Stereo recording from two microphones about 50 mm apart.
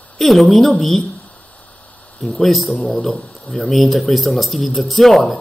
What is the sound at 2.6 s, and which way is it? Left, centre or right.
Speech, left.